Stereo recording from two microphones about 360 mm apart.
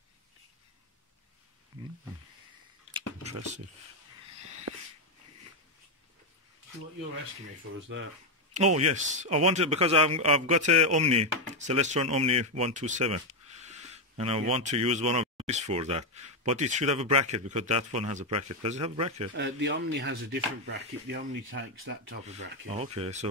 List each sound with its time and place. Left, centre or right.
8.5 s a man's voice: centre
19.3 s speech: right